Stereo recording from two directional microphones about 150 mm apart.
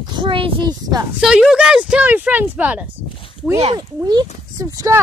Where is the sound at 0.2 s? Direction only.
35° right (ahead or behind).